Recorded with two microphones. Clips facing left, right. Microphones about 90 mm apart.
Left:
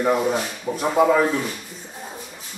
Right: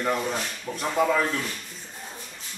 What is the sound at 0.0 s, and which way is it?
A man's voice, 10° left (ahead or behind).